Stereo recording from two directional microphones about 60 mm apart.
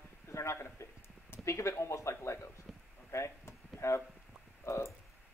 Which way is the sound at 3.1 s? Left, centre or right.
Left.